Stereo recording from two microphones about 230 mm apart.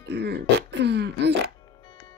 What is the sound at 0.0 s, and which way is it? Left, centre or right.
Throat clearing, right.